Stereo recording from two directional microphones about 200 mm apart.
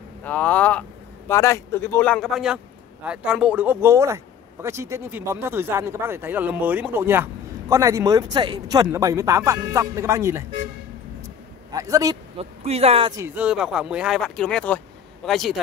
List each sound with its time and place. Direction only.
0.2 s speech: 5° left (ahead or behind); by 10.4 s 15° right (ahead or behind)
11.7 s speech: 15° right (ahead or behind)
12.4 s speech: 30° right (ahead or behind)
13.1 s speech: 10° right (ahead or behind)